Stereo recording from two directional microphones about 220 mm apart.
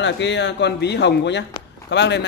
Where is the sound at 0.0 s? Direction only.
55° left (ahead or behind).